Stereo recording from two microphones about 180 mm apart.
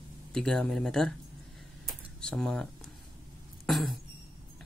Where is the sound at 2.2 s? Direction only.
5° left (ahead or behind).